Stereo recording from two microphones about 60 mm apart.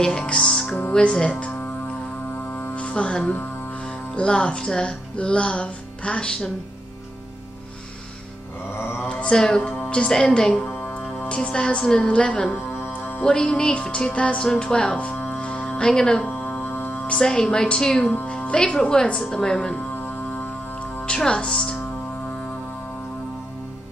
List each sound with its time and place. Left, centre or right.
0.0 s music: centre
0.9 s speech: centre
2.7 s speech: centre
8.7 s mantra: left
9.0 s mantra: centre
9.8 s speech: centre
10.7 s music: left
11.1 s a woman's voice: centre
12.8 s music: left
13.2 s speech: centre
16.3 s music: left
17.1 s speech: centre
21.0 s speech: centre